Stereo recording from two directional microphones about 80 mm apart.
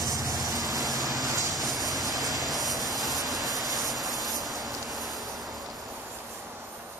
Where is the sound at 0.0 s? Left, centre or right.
Right.